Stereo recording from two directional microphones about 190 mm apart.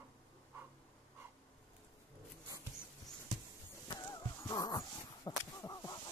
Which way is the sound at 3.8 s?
20° left (ahead or behind).